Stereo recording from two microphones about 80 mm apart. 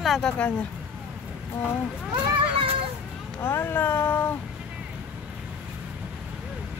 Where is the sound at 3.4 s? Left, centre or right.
Left.